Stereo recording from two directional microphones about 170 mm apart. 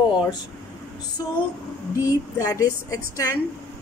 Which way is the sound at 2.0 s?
20° left (ahead or behind).